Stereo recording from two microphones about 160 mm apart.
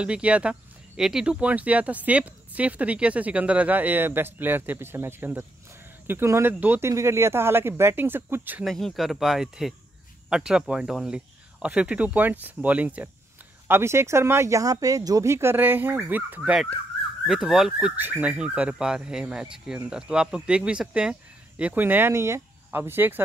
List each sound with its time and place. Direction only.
0.0 s speech: 5° right (ahead or behind)
8.6 s speech: centre (ahead or behind)